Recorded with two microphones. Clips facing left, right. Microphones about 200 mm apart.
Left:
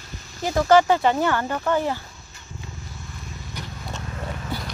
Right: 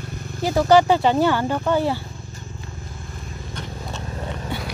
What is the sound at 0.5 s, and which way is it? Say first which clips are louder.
Speech: right 1 dB; 15° right (ahead or behind).